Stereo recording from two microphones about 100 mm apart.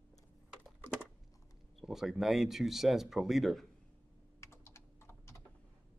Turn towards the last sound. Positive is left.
turn(degrees=25)  # may be behind; listen again after turning